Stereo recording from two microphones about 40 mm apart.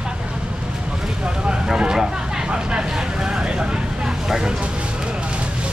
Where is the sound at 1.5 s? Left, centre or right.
Right.